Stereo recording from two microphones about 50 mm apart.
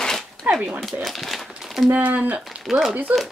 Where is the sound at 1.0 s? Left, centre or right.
Centre.